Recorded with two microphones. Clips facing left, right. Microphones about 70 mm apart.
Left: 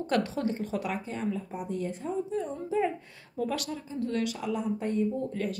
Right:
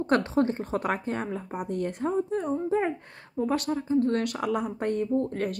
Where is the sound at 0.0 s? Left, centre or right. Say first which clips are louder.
Right 5 dB; right.